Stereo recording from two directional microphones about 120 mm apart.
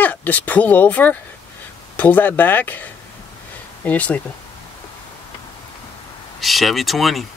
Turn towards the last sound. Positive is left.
turn(degrees=0)  # may be behind; listen again after turning